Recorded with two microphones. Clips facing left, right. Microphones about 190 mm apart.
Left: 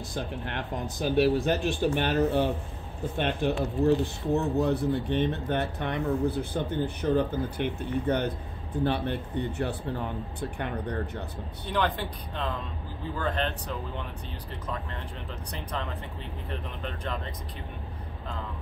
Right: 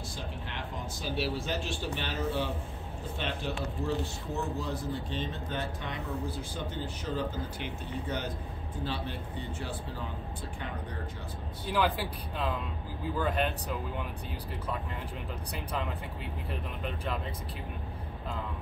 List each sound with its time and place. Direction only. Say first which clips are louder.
0.1 s speech: left 7 dB; 60° left (ahead or behind)
11.7 s speech: left 1 dB; 5° right (ahead or behind)
15.5 s speech: left 1 dB; 5° right (ahead or behind)